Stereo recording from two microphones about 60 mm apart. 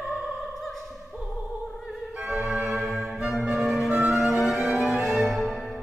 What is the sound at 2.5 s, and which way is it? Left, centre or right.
Music, centre.